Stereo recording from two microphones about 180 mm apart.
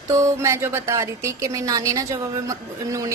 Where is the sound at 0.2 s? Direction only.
15° right (ahead or behind).